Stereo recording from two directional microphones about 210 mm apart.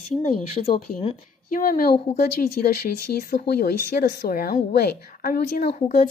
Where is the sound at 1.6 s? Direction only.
40° left (ahead or behind).